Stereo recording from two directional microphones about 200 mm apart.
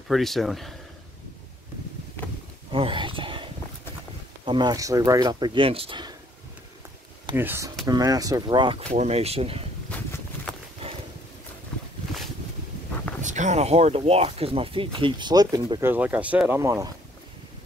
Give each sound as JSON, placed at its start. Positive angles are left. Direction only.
{"t": 0.1, "sound": "speech", "side_deg": 0}
{"t": 2.7, "sound": "wild animals", "side_deg": -25}
{"t": 4.5, "sound": "speech", "side_deg": -20}
{"t": 7.3, "sound": "speech", "side_deg": -10}
{"t": 13.2, "sound": "speech", "side_deg": -40}